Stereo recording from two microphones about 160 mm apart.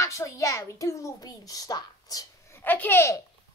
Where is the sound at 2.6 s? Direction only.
10° left (ahead or behind).